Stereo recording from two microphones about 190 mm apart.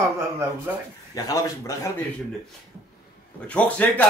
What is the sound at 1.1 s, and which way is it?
Speech, 20° left (ahead or behind).